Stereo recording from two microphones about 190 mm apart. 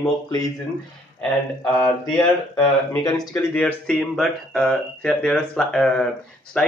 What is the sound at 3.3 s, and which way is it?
A man's voice, 5° left (ahead or behind).